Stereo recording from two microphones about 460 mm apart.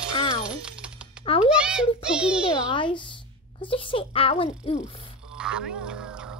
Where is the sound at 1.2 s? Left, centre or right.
Centre.